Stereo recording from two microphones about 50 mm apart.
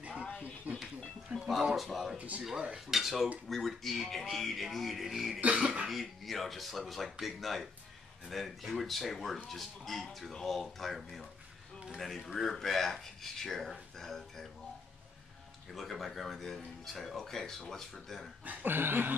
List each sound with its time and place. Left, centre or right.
0.7 s music: right
1.3 s music: centre
1.8 s speech: centre
2.1 s speech: right
2.7 s speech: centre
5.4 s speech: right
5.9 s speech: centre
15.7 s speech: centre
18.4 s speech: right